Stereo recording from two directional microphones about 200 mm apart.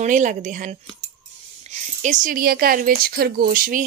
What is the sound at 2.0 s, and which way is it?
Speech, 40° right (ahead or behind).